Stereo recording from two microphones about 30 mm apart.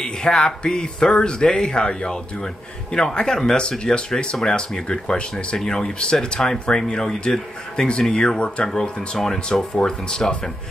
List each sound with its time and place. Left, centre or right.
0.2 s speech: left
4.8 s speech: left
8.4 s speech: left